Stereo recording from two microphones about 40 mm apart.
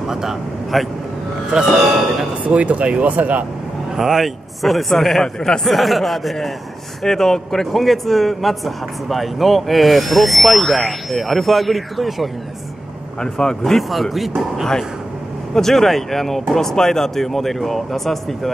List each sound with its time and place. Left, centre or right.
0.1 s a man's voice: centre
0.7 s a man's voice: centre
2.4 s speech: right
3.9 s a man's voice: centre
7.0 s a man's voice: centre
13.2 s speech: centre
13.7 s a man's voice: centre